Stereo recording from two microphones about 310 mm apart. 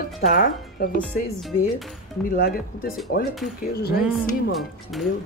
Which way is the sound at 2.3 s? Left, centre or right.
Left.